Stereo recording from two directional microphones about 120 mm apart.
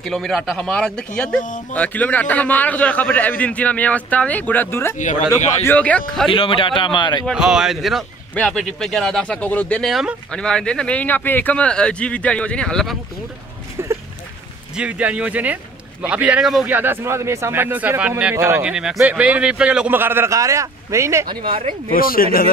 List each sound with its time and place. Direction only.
0.0 s a man's voice: 5° left (ahead or behind)
6.3 s a man's voice: 45° left (ahead or behind)
7.3 s a man's voice: 5° right (ahead or behind); by 9.8 s 10° left (ahead or behind)
9.8 s a man's voice: centre (ahead or behind)
13.8 s a sound: 20° right (ahead or behind)
14.8 s a man's voice: 10° right (ahead or behind)
16.6 s a man's voice: 15° right (ahead or behind)
18.6 s a man's voice: 5° right (ahead or behind); by 21.3 s 25° right (ahead or behind)
21.3 s speech: 45° right (ahead or behind)